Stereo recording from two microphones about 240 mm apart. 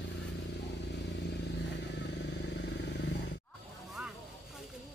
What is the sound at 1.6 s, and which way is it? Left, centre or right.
Vehicle, left.